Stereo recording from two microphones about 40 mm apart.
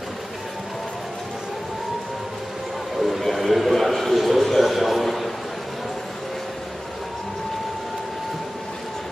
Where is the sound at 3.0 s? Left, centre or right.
Centre.